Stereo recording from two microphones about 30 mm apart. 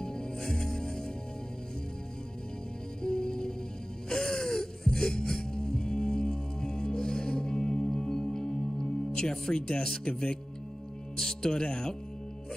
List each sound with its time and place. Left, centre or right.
0.0 s music: left
3.0 s music: left
9.6 s speech: left
11.1 s speech: left